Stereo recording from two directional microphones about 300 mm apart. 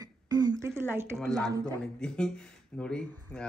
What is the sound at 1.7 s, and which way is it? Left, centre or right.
Speech, centre.